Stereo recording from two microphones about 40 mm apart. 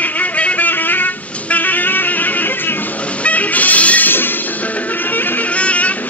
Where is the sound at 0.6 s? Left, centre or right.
Left.